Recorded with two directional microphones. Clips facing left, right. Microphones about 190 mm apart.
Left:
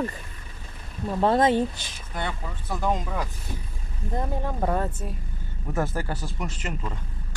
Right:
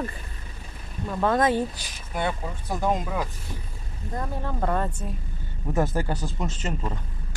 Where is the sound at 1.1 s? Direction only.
30° left (ahead or behind).